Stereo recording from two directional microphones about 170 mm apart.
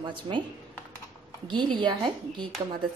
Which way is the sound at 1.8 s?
25° right (ahead or behind).